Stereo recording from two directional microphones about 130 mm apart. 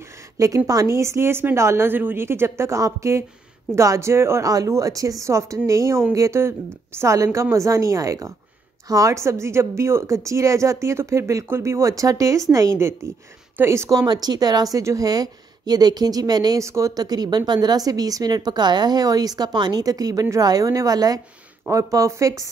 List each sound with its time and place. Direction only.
0.7 s a woman's voice: 25° right (ahead or behind)